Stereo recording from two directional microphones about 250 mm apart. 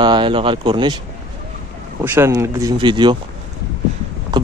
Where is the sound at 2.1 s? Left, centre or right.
Centre.